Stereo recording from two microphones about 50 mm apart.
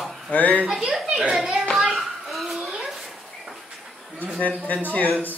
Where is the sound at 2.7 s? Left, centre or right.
Centre.